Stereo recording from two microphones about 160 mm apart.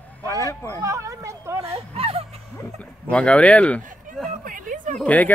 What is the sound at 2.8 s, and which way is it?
Speech, 5° left (ahead or behind).